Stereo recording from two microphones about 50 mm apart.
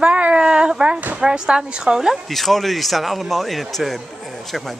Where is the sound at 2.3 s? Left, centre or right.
Centre.